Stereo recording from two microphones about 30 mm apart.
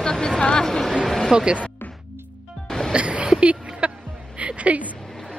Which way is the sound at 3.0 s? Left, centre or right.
Right.